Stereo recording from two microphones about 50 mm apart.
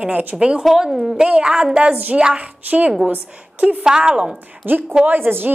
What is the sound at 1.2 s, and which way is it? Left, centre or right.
A woman's voice, centre.